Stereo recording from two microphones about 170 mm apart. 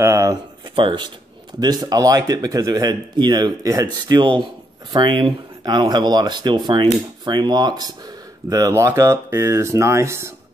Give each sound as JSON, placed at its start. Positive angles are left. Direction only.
{"t": 0.0, "sound": "speech", "side_deg": -20}